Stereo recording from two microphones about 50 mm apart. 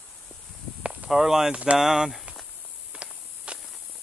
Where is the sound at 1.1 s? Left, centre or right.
Centre.